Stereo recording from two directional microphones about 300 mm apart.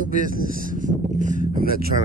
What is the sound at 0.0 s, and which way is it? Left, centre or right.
Speech, right.